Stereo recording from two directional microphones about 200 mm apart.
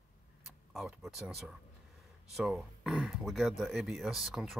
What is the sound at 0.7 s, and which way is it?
Speech, centre (ahead or behind).